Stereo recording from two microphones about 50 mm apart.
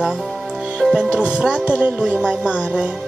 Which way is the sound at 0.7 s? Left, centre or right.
Centre.